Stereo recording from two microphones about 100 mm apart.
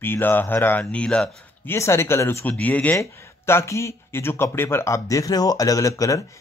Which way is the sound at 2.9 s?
30° left (ahead or behind).